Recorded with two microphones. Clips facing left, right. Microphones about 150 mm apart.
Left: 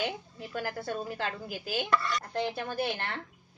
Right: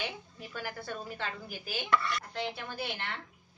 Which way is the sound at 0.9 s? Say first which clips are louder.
Left 4 dB; 35° left (ahead or behind).